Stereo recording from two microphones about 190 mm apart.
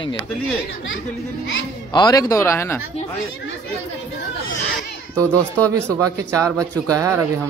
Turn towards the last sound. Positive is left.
turn(degrees=-15)  # may be behind; listen again after turning